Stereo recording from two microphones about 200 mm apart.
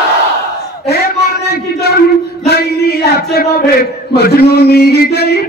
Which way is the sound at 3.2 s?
50° left (ahead or behind).